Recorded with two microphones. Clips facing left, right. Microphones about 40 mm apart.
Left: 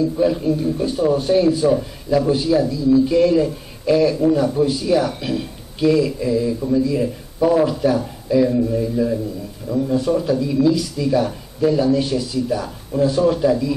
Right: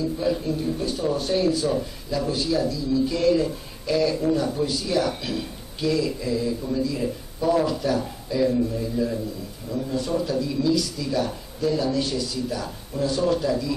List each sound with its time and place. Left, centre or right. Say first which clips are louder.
0.2 s a man's voice: left 7 dB; centre
10.0 s speech: left 6 dB; centre